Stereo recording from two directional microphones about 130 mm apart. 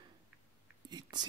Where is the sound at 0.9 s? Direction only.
30° right (ahead or behind).